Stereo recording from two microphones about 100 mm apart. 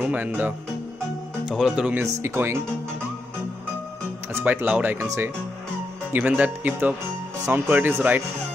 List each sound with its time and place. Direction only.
0.0 s speech: 15° right (ahead or behind)
1.5 s speech: 5° right (ahead or behind)
2.0 s speech: 25° right (ahead or behind)
4.3 s speech: 20° right (ahead or behind)
4.9 s speech: 30° right (ahead or behind)
6.1 s speech: 15° right (ahead or behind)